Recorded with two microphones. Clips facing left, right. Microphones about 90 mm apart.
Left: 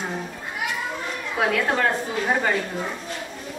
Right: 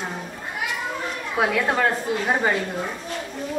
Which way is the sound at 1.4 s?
5° right (ahead or behind).